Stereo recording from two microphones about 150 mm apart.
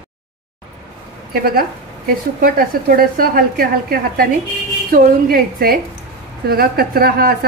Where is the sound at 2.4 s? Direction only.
75° right (ahead or behind).